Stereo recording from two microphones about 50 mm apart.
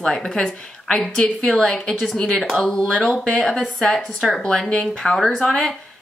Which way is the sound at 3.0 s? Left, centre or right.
Left.